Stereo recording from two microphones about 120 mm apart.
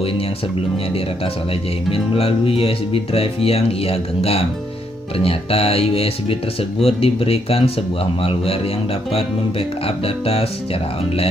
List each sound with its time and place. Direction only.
1.9 s speech: 50° left (ahead or behind)
9.8 s speech: 55° left (ahead or behind)